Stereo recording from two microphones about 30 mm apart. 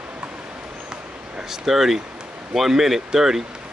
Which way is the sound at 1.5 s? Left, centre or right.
Centre.